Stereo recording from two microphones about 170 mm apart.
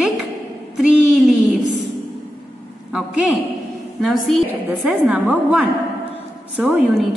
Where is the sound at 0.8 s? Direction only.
Centre (ahead or behind).